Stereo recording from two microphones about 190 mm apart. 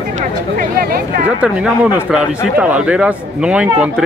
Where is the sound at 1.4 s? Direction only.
5° right (ahead or behind).